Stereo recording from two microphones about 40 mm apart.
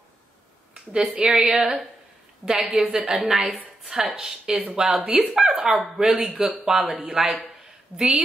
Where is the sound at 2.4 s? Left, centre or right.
Centre.